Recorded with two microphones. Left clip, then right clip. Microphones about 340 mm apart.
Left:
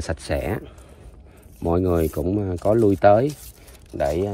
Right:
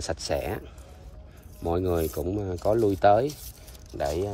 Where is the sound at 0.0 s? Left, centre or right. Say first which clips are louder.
Left 3 dB; centre.